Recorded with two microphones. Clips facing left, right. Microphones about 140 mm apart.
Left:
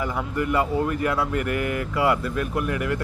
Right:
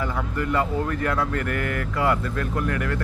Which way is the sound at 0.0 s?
15° left (ahead or behind).